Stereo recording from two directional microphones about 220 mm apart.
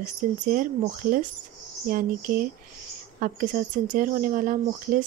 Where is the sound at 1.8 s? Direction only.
40° right (ahead or behind).